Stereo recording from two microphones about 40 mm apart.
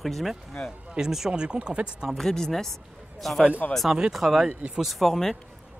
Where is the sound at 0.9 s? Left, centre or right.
Centre.